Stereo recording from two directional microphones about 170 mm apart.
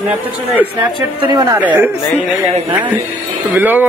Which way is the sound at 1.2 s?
25° right (ahead or behind).